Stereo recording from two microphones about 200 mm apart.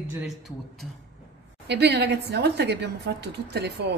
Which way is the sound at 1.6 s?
60° right (ahead or behind).